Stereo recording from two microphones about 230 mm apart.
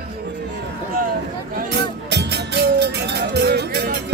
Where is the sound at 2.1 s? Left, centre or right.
Right.